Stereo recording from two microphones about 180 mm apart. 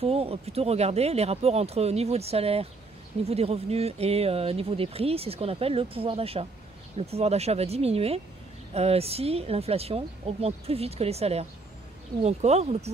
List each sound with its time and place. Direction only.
0.0 s speech: 35° right (ahead or behind)